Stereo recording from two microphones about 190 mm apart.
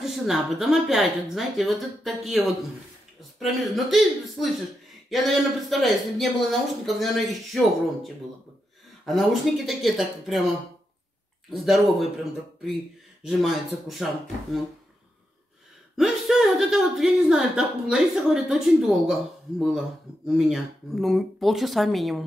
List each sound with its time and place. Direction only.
0.0 s a woman's voice: centre (ahead or behind)
13.3 s a woman's voice: centre (ahead or behind)
16.0 s a woman's voice: centre (ahead or behind)